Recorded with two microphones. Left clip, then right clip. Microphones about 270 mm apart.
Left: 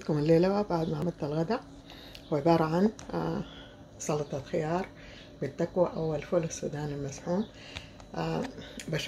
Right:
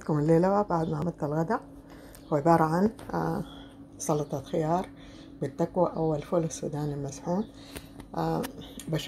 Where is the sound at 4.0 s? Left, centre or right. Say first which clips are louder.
Right 3 dB; centre.